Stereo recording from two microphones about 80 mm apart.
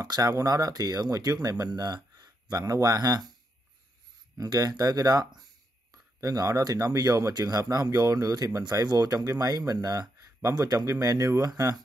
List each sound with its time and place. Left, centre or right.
0.0 s speech: right
4.4 s speech: right
10.5 s speech: right